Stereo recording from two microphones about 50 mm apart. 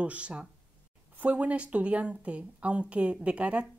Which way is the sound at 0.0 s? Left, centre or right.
Right.